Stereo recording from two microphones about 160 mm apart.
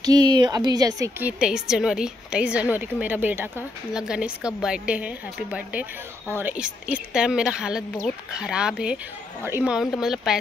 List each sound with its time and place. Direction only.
0.0 s speech: 25° right (ahead or behind)
1.2 s speech: 5° right (ahead or behind)